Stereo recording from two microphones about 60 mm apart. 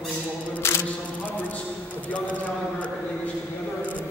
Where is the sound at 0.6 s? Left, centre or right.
Left.